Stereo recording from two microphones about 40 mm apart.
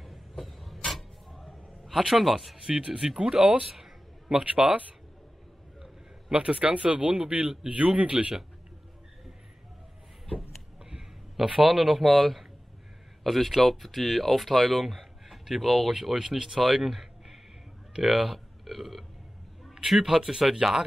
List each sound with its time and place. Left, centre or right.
0.0 s vehicle: centre
3.2 s speech: right
3.6 s a sound: centre
4.5 s speech: right
6.3 s speech: right
10.8 s a sound: centre
11.4 s speech: centre
11.7 s speech: centre